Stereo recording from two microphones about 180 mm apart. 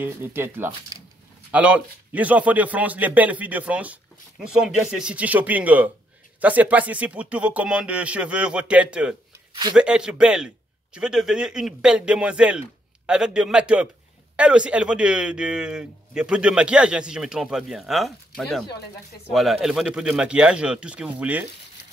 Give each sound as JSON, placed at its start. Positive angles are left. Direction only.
{"t": 0.0, "sound": "a man's voice", "side_deg": -10}
{"t": 0.9, "sound": "a sound", "side_deg": -20}
{"t": 1.5, "sound": "a man's voice", "side_deg": -5}